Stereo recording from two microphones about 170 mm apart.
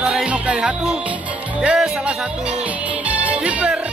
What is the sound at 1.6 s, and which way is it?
Speech, 5° right (ahead or behind).